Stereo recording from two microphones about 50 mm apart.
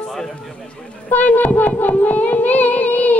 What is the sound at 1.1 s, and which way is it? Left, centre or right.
Music, left.